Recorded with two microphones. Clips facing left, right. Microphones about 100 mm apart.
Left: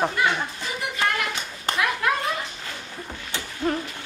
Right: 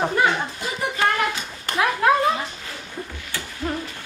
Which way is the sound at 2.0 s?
30° right (ahead or behind).